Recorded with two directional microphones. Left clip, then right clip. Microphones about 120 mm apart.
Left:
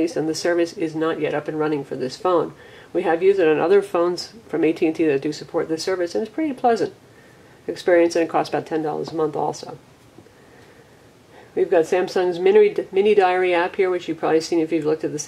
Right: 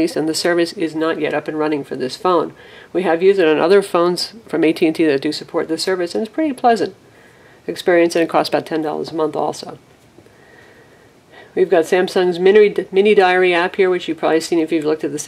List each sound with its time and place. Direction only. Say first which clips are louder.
0.0 s speech: right 4 dB; 30° right (ahead or behind)
11.5 s speech: right 4 dB; 30° right (ahead or behind)